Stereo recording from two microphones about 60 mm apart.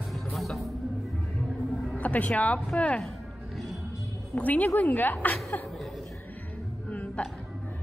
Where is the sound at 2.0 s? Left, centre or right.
Left.